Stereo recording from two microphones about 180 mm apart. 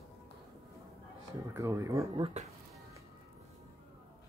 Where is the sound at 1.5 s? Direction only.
15° right (ahead or behind).